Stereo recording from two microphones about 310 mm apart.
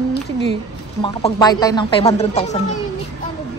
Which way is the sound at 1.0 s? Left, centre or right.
Centre.